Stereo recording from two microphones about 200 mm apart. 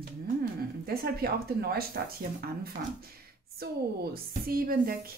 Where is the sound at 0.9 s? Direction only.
50° right (ahead or behind).